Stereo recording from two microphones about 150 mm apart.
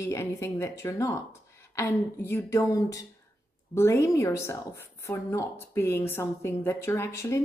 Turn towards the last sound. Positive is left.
turn(degrees=20)  # may be behind; listen again after turning